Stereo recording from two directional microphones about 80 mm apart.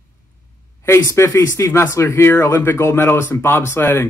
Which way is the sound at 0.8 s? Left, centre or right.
Left.